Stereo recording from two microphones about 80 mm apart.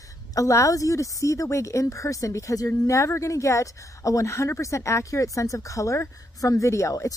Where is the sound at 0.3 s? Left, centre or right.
Left.